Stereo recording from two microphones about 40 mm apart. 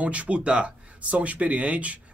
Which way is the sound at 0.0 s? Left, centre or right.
Right.